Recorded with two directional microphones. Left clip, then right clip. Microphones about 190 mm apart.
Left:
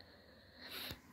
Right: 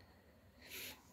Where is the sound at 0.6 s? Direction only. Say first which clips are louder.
Left 4 dB; 15° right (ahead or behind).